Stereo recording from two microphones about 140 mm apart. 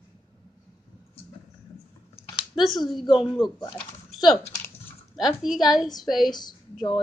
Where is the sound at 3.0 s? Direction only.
35° left (ahead or behind).